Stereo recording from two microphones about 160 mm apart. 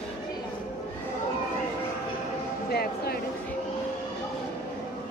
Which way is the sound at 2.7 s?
75° left (ahead or behind).